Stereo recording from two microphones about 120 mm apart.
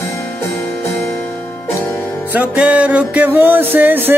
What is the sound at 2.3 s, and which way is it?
Music, 15° right (ahead or behind).